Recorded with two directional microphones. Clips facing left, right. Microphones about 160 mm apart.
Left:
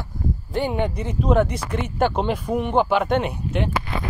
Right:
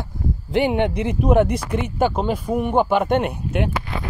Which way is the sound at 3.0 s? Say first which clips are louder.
Right 2 dB; 55° right (ahead or behind).